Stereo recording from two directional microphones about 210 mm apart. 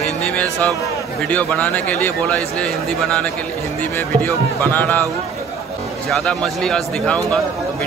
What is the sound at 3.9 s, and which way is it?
A man's voice, 10° left (ahead or behind).